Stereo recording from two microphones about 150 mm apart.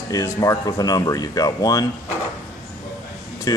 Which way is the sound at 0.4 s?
20° left (ahead or behind).